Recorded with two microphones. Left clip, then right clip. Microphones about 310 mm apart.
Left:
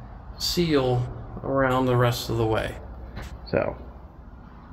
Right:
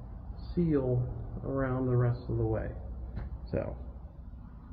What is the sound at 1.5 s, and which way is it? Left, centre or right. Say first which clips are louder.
Speech: left 11 dB; left.